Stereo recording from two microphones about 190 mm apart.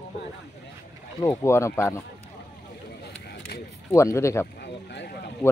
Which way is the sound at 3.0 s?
60° left (ahead or behind).